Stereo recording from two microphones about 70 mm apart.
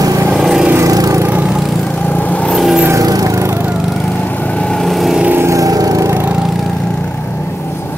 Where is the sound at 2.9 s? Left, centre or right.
Right.